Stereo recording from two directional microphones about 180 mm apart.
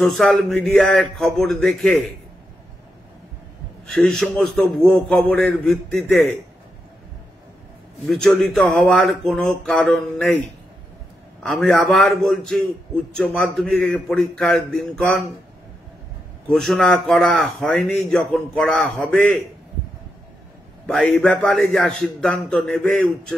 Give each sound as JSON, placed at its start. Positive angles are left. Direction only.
{"t": 0.0, "sound": "a man's voice", "side_deg": 0}
{"t": 3.8, "sound": "a man's voice", "side_deg": 5}
{"t": 8.1, "sound": "a man's voice", "side_deg": 5}
{"t": 11.4, "sound": "a man's voice", "side_deg": 0}
{"t": 16.4, "sound": "a man's voice", "side_deg": 0}
{"t": 20.8, "sound": "a man's voice", "side_deg": 5}